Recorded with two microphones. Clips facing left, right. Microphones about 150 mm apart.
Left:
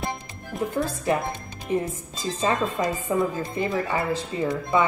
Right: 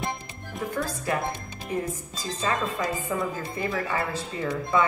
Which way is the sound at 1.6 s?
5° right (ahead or behind).